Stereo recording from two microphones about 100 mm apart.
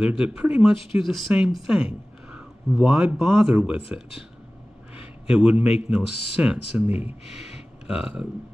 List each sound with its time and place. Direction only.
0.0 s a man's voice: 10° right (ahead or behind)
0.9 s a man's voice: centre (ahead or behind)
4.9 s a man's voice: 10° right (ahead or behind)